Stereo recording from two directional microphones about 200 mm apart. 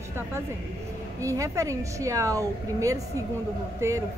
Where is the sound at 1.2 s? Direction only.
15° right (ahead or behind).